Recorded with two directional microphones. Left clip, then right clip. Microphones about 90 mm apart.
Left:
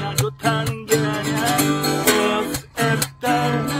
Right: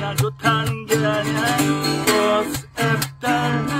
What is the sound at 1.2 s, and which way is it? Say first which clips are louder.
Music: even; 35° left (ahead or behind).